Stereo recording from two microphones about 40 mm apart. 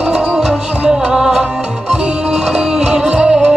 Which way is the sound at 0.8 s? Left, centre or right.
Centre.